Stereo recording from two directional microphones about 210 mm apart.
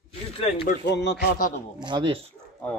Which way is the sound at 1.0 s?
45° left (ahead or behind).